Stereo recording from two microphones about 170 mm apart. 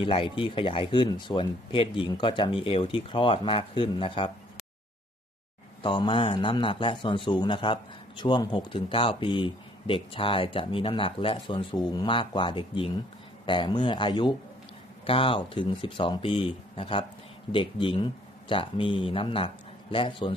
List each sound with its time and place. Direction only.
0.0 s a man's voice: 30° left (ahead or behind)
5.8 s a man's voice: 30° left (ahead or behind)